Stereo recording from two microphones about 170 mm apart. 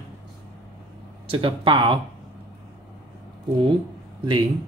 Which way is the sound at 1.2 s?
35° right (ahead or behind).